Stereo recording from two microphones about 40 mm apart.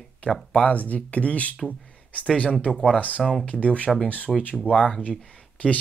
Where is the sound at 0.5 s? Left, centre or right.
Left.